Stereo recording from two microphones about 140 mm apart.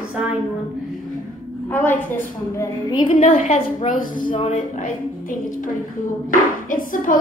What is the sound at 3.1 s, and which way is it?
Speech, 65° left (ahead or behind).